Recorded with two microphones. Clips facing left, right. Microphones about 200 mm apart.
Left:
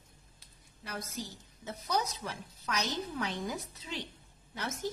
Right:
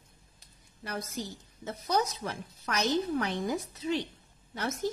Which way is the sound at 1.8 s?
50° right (ahead or behind).